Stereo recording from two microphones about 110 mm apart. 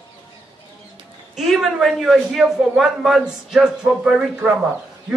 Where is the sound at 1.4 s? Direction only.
Centre (ahead or behind).